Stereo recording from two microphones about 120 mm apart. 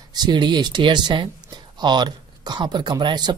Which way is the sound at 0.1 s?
35° right (ahead or behind).